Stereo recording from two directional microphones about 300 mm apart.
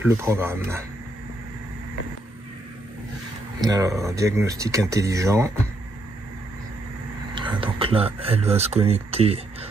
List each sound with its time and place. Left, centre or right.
0.0 s speech: centre
3.6 s speech: centre
7.3 s speech: centre